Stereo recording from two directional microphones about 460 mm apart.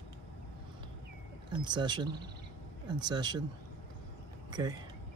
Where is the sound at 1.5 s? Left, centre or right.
Centre.